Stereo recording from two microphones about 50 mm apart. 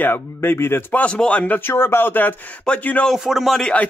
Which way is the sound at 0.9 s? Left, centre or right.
Left.